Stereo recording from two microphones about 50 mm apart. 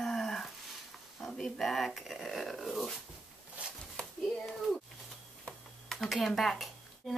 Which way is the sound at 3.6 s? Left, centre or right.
Right.